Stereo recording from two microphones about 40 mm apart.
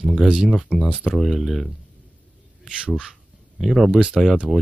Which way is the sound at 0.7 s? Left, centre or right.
Left.